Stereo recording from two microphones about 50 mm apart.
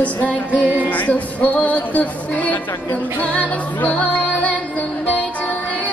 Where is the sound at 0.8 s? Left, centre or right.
Left.